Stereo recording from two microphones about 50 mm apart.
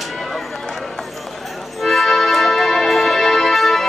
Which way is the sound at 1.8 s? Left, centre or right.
Centre.